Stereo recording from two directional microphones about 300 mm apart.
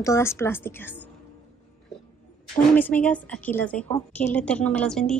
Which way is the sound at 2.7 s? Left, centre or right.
Centre.